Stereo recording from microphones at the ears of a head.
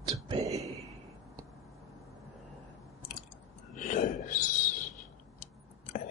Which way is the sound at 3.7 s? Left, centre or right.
Left.